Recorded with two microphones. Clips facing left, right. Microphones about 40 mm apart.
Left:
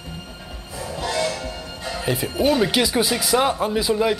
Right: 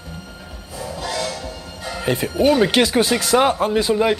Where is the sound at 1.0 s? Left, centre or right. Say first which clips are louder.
Left 2 dB; centre.